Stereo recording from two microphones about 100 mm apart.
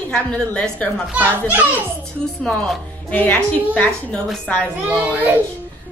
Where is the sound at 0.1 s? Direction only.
10° left (ahead or behind).